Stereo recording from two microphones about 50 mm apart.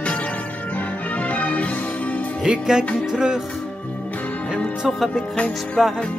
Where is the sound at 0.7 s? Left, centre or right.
Left.